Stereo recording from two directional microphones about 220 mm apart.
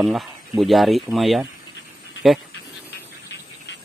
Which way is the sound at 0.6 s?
Centre (ahead or behind).